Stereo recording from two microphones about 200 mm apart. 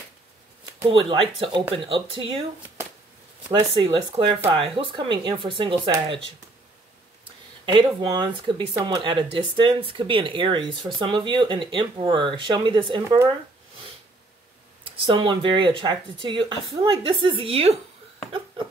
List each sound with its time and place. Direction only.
0.8 s speech: 30° right (ahead or behind)
3.7 s speech: 25° right (ahead or behind)
7.6 s speech: 25° right (ahead or behind)
14.9 s speech: 25° right (ahead or behind)